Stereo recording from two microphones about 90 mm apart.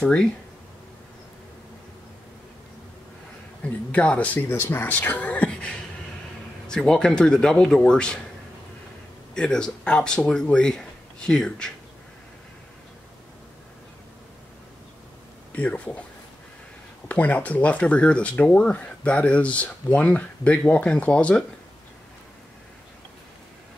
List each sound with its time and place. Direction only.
0.0 s speech: 5° left (ahead or behind)
3.6 s speech: 10° left (ahead or behind)
9.3 s speech: 10° left (ahead or behind)
15.5 s speech: 15° left (ahead or behind)
17.1 s speech: 20° left (ahead or behind)